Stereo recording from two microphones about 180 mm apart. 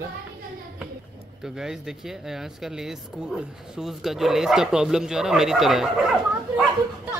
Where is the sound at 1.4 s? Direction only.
5° right (ahead or behind).